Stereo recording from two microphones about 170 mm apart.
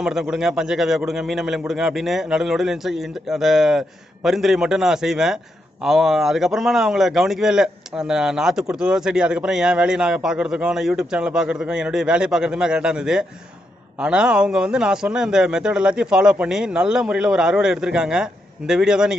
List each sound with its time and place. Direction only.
0.0 s a man's voice: 5° right (ahead or behind)